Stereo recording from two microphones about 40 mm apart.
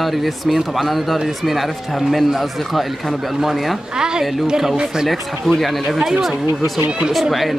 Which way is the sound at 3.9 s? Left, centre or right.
Centre.